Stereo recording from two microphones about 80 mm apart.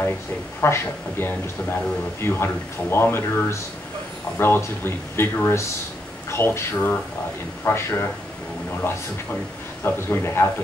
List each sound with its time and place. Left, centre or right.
0.6 s speech: left
9.8 s speech: left